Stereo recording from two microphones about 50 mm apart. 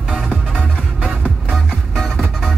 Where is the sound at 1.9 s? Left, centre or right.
Centre.